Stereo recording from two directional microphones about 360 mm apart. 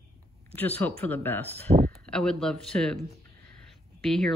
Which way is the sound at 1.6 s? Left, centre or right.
Right.